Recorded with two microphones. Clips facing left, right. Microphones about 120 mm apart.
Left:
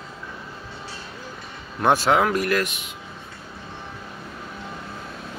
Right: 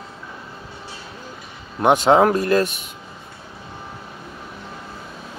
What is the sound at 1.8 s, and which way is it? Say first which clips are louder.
Speech: right 5 dB; 20° right (ahead or behind).